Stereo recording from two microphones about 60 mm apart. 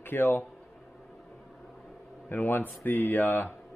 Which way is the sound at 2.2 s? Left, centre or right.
Left.